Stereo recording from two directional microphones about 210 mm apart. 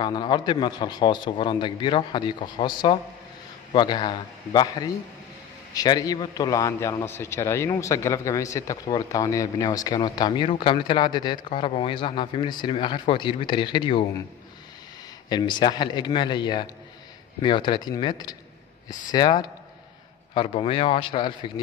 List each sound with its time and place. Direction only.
0.0 s a man's voice: 20° left (ahead or behind)
15.2 s speech: 20° left (ahead or behind)